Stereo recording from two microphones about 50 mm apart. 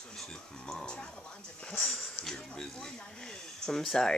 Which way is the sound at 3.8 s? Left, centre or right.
Centre.